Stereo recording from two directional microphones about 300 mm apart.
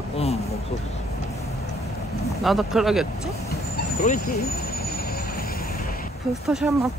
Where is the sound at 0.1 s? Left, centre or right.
Centre.